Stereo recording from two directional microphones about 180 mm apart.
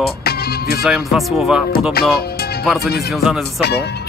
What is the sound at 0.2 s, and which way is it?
Music, 60° left (ahead or behind).